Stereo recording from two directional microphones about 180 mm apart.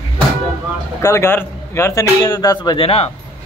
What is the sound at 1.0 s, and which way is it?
A man's voice, 15° left (ahead or behind).